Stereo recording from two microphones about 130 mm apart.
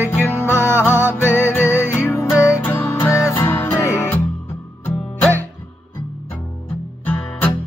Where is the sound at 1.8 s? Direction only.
20° left (ahead or behind).